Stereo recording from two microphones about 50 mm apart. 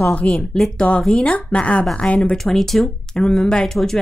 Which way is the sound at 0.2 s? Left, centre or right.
Left.